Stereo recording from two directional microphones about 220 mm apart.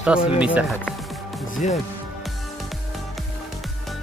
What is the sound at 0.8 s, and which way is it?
Music, centre (ahead or behind).